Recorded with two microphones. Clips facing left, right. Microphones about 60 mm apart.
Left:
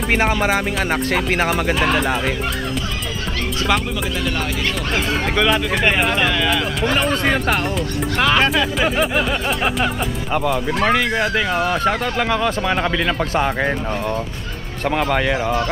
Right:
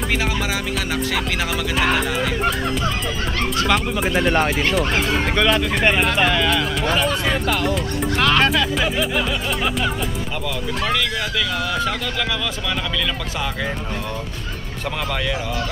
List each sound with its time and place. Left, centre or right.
0.1 s speech: left
4.2 s speech: right
5.3 s speech: centre
7.2 s speech: left
8.2 s speech: centre
8.8 s speech: left
10.5 s speech: left
14.9 s speech: left